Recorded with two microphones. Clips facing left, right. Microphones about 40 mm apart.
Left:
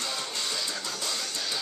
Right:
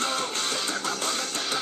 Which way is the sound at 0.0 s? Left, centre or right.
Right.